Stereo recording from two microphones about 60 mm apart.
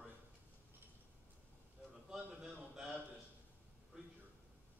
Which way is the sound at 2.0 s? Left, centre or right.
Centre.